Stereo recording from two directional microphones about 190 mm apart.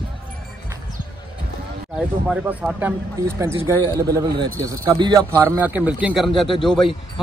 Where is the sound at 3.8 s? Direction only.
20° right (ahead or behind).